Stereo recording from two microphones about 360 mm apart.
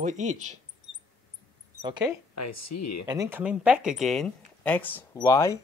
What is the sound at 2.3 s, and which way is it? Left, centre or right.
Speech, left.